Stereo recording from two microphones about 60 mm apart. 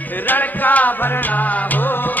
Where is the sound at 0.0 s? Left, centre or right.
Left.